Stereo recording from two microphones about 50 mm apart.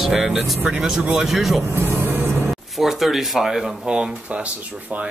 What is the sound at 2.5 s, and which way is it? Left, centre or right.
A man's voice, centre.